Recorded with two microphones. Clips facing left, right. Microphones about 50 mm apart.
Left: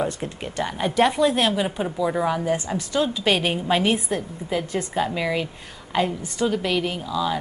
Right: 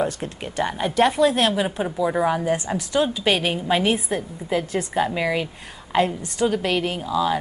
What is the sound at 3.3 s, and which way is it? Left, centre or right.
A woman's voice, centre.